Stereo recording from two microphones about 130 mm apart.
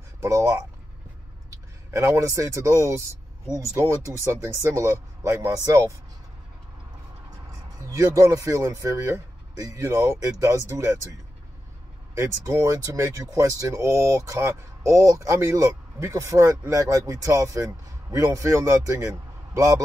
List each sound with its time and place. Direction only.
0.2 s speech: 25° right (ahead or behind)
1.9 s speech: 20° right (ahead or behind)
7.8 s speech: 25° right (ahead or behind)
12.2 s speech: 20° right (ahead or behind)